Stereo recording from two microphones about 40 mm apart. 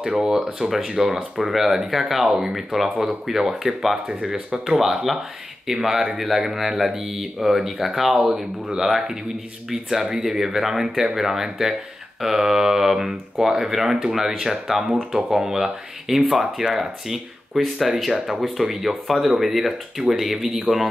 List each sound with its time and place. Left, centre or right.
0.0 s speech: centre
17.6 s speech: centre